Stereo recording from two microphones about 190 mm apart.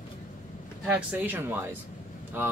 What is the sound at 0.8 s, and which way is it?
Speech, 10° right (ahead or behind).